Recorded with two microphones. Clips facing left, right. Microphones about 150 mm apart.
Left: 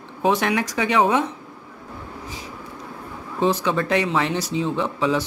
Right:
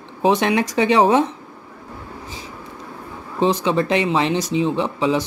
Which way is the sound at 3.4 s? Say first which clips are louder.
Right 3 dB; 20° right (ahead or behind).